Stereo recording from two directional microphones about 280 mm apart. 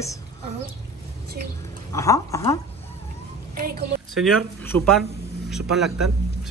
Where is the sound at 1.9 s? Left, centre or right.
Centre.